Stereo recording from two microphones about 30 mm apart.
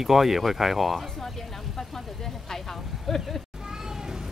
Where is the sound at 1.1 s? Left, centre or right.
Centre.